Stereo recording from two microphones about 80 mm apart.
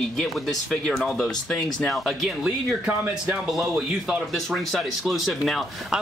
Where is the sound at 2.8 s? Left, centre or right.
Centre.